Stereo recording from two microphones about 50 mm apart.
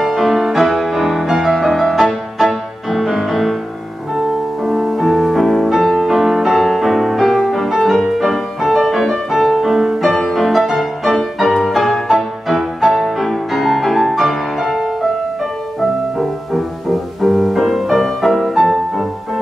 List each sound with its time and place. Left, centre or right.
0.0 s music: centre
4.6 s music: centre
17.2 s music: centre